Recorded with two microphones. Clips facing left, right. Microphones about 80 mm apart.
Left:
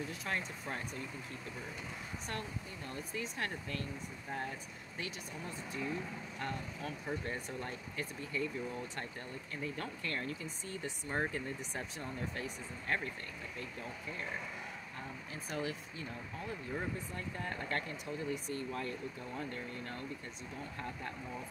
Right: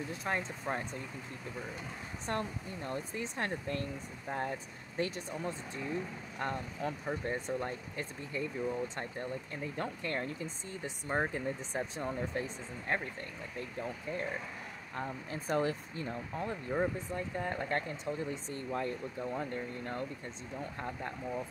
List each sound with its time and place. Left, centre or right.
0.1 s speech: right
2.2 s speech: right
15.0 s speech: right
17.1 s speech: right